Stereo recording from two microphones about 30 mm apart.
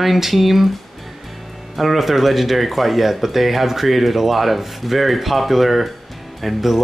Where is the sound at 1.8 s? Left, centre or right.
Centre.